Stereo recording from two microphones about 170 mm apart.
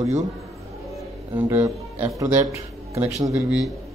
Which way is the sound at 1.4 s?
15° right (ahead or behind).